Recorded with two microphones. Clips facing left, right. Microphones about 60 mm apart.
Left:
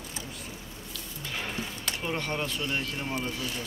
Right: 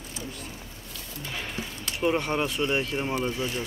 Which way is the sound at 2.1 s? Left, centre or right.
Centre.